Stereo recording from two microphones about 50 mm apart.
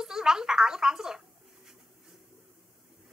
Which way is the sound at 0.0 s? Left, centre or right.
Centre.